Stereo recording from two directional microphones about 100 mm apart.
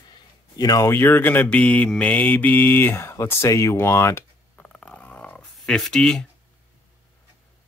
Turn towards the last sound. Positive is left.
turn(degrees=10)  # may be behind; listen again after turning